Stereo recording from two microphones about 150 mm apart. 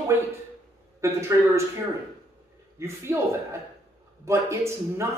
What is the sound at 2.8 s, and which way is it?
Speech, 15° right (ahead or behind).